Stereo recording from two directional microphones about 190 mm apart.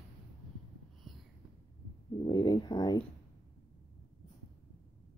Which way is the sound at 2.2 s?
20° left (ahead or behind).